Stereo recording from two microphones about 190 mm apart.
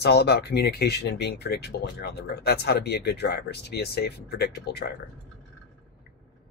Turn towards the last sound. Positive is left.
turn(degrees=60)  # may be behind; listen again after turning